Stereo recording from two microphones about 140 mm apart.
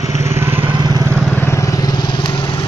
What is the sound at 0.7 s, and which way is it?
Vehicle, 30° right (ahead or behind).